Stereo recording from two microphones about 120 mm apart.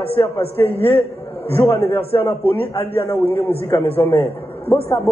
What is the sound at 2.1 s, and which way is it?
Speech, 30° left (ahead or behind).